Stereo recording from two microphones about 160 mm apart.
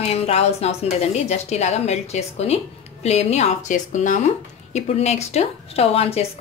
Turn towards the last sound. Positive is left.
turn(degrees=40)  # may be behind; listen again after turning